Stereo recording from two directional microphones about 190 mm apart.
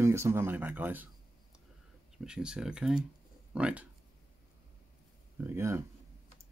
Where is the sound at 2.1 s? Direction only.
5° right (ahead or behind).